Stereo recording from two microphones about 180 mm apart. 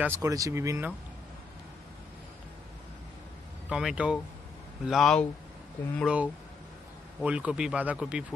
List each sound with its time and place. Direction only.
0.0 s speech: 15° right (ahead or behind)
3.6 s speech: 5° right (ahead or behind)
6.0 s speech: 5° right (ahead or behind)